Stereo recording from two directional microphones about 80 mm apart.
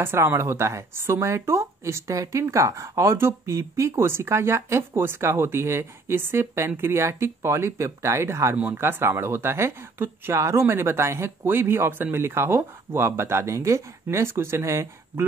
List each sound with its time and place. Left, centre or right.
0.0 s speech: right